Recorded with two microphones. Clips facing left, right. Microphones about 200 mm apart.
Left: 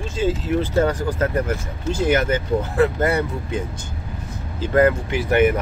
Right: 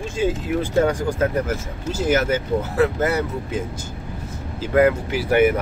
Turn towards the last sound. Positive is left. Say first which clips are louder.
# even
turn(degrees=-10)  # may be behind; listen again after turning